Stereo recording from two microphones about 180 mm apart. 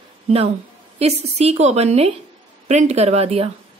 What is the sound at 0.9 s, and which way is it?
Speech, 35° right (ahead or behind).